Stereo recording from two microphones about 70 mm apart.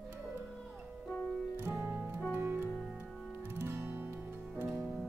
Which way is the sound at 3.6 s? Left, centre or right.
Right.